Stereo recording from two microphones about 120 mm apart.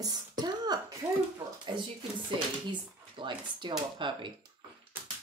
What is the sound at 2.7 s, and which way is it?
Speech, 40° right (ahead or behind).